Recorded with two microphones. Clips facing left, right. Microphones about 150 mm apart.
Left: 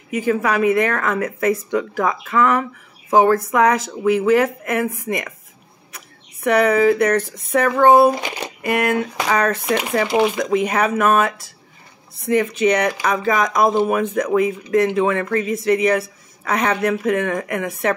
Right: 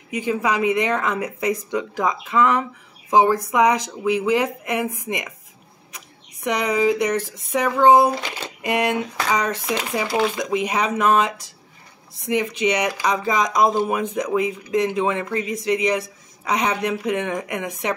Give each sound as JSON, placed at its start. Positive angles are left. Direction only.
{"t": 0.1, "sound": "speech", "side_deg": -15}
{"t": 8.2, "sound": "speech", "side_deg": 15}
{"t": 8.6, "sound": "speech", "side_deg": -20}
{"t": 10.0, "sound": "speech", "side_deg": 20}
{"t": 10.3, "sound": "speech", "side_deg": -10}